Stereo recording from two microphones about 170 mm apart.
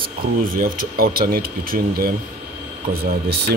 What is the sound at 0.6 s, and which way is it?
Speech, 60° right (ahead or behind).